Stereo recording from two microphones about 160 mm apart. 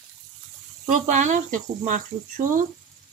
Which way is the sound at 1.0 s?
50° right (ahead or behind).